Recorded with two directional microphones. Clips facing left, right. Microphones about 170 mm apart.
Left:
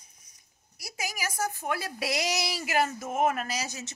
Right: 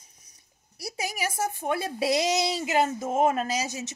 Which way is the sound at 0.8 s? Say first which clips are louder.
Right 5 dB; 30° right (ahead or behind).